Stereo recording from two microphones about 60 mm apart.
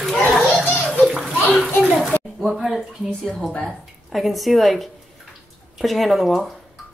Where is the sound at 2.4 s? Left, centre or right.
Centre.